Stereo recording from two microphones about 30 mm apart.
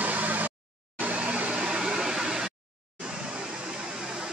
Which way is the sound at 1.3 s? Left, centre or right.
Right.